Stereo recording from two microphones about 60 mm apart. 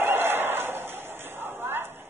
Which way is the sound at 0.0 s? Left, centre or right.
Right.